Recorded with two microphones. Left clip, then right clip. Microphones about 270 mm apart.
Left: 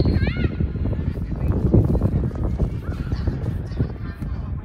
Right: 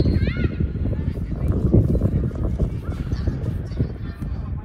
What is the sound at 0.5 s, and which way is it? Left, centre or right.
Horse, centre.